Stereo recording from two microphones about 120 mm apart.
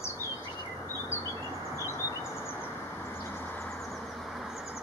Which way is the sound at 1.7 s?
25° right (ahead or behind).